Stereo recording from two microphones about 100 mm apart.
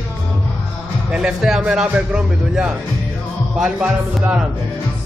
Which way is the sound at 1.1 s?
5° right (ahead or behind).